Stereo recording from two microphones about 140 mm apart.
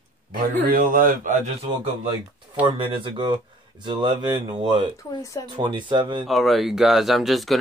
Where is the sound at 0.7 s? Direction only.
85° right; by 1.5 s 65° right (ahead or behind).